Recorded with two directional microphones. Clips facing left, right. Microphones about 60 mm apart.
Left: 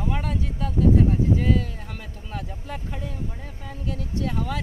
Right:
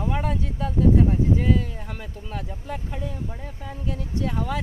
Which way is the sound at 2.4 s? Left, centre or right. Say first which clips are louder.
Right 1 dB; centre.